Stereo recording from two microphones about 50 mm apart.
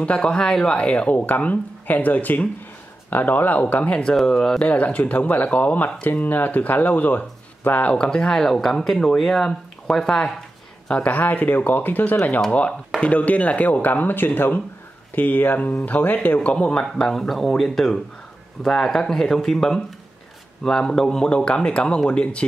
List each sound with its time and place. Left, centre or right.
0.0 s speech: left
0.7 s speech: left
4.0 s speech: centre
4.6 s speech: left
7.9 s speech: centre
11.1 s speech: left
16.5 s speech: centre
16.9 s speech: centre
20.6 s speech: centre